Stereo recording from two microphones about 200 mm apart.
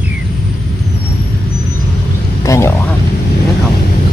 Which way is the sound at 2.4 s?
15° left (ahead or behind).